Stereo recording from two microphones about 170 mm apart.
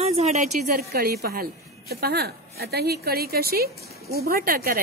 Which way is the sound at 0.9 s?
65° right (ahead or behind).